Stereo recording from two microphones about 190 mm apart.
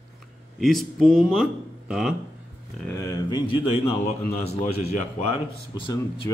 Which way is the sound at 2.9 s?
15° left (ahead or behind).